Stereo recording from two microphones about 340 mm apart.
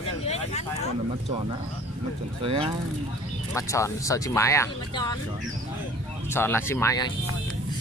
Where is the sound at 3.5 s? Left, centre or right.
Centre.